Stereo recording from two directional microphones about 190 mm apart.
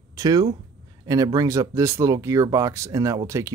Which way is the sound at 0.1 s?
20° right (ahead or behind).